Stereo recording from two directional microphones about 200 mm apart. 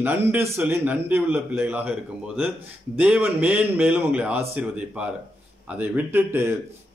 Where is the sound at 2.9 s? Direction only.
10° right (ahead or behind).